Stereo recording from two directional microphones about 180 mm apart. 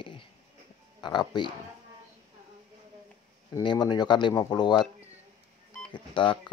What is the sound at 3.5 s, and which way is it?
Speech, 25° left (ahead or behind).